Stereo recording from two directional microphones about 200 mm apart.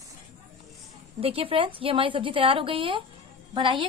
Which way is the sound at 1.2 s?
30° right (ahead or behind).